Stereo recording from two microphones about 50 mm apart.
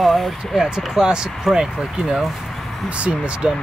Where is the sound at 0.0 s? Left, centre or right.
Centre.